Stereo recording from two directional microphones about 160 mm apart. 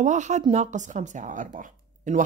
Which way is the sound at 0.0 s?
50° right (ahead or behind).